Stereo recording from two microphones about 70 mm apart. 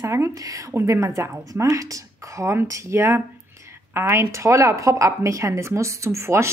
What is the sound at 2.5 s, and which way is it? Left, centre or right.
Speech, right.